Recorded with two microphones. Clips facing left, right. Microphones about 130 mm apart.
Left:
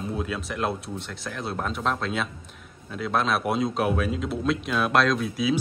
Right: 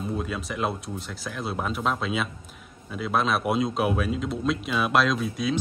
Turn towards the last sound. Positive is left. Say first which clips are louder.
# left 2 dB
turn(degrees=0)  # may be behind; listen again after turning